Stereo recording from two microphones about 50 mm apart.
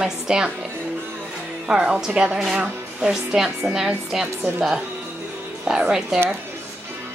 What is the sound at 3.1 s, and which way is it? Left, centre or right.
A woman's voice, centre.